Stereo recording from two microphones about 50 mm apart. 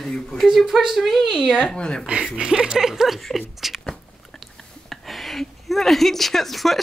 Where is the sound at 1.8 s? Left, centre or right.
Centre.